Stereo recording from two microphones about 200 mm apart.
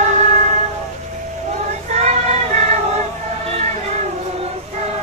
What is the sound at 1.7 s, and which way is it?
Child singing, 35° right (ahead or behind).